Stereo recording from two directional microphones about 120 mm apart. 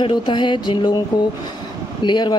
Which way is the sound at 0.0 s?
40° left (ahead or behind).